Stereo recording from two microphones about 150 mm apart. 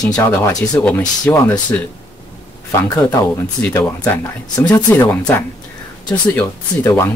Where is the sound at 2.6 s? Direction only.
20° left (ahead or behind).